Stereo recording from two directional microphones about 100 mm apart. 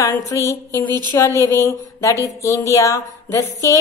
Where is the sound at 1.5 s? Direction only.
30° left (ahead or behind).